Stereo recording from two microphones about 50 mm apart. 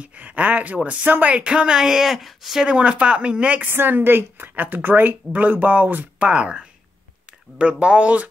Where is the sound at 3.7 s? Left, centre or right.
Right.